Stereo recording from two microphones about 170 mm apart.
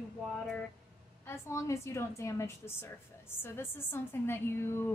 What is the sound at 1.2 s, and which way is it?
A woman's voice, 15° left (ahead or behind).